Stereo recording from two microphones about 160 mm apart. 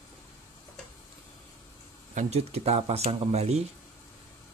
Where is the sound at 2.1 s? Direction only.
45° right (ahead or behind).